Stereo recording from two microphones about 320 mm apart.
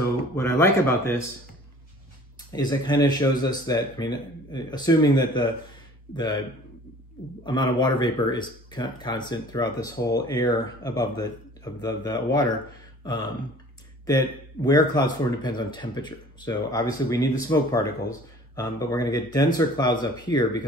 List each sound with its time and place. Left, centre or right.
0.0 s speech: centre
2.5 s speech: centre
7.4 s speech: centre
14.0 s speech: centre